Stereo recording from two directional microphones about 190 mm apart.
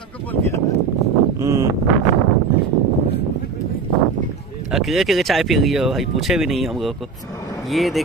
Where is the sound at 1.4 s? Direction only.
15° right (ahead or behind).